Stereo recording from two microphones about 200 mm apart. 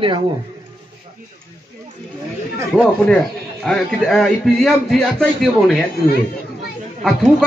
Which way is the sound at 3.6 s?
5° left (ahead or behind).